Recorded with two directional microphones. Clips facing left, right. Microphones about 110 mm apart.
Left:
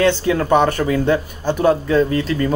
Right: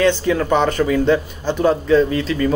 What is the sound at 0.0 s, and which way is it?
A man's voice, 15° left (ahead or behind).